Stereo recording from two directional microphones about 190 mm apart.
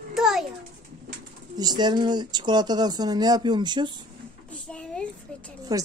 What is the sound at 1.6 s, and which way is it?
Speech, 20° right (ahead or behind).